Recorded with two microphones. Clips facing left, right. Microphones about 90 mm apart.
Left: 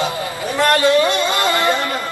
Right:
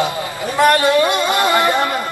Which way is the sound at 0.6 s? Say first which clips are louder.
Right 1 dB; 15° right (ahead or behind).